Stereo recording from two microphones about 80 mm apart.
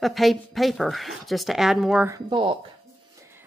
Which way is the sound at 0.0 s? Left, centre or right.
Centre.